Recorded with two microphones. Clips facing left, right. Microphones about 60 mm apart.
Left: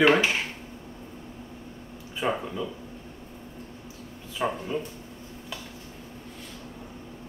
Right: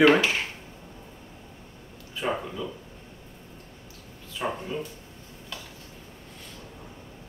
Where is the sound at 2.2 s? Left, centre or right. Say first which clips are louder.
Left 1 dB; centre.